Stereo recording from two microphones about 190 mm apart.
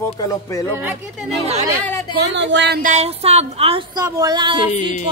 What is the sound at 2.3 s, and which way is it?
Music, 70° right (ahead or behind).